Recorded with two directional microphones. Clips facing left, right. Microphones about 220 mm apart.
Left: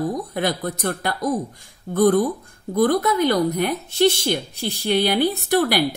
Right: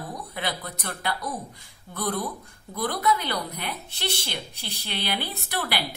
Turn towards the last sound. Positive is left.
turn(degrees=45)  # may be behind; listen again after turning